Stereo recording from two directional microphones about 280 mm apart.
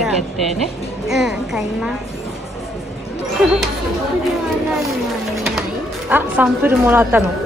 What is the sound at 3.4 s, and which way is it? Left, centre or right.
Speech, centre.